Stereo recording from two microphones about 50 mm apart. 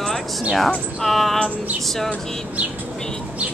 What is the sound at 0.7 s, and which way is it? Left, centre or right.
Music, centre.